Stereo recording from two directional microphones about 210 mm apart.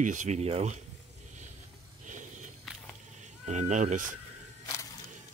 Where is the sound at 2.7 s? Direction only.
Centre (ahead or behind).